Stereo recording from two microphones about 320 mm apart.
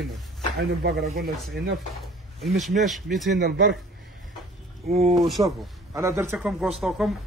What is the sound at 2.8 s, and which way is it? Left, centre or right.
Speech, centre.